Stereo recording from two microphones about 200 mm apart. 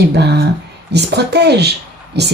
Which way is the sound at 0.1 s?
55° right (ahead or behind).